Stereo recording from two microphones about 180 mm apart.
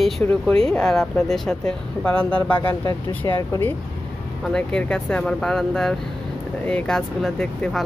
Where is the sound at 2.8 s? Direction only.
20° left (ahead or behind).